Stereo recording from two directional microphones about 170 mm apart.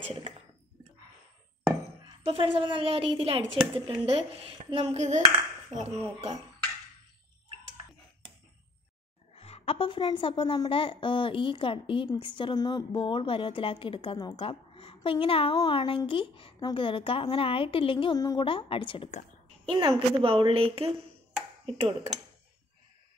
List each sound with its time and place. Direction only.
2.0 s speech: 30° right (ahead or behind)
9.3 s a woman's voice: 35° left (ahead or behind)
19.7 s speech: 30° right (ahead or behind)